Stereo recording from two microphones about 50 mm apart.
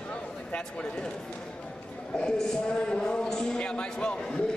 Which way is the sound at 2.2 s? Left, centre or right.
Centre.